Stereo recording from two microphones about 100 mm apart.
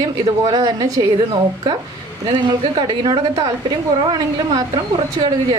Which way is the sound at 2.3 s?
55° right (ahead or behind).